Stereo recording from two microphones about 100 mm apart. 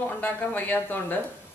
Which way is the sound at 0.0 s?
20° left (ahead or behind).